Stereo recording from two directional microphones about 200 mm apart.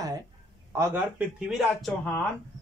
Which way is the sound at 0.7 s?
10° right (ahead or behind).